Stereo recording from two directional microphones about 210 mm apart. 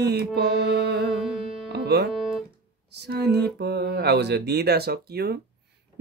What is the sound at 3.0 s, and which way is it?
Mantra, 50° right (ahead or behind).